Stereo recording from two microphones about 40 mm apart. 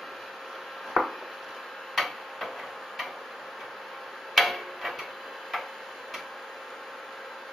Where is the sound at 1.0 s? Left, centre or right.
Right.